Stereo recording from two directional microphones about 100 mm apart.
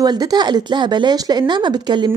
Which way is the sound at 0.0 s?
40° right (ahead or behind).